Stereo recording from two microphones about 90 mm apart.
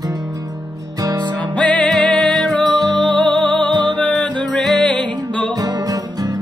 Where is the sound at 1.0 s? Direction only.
50° right (ahead or behind).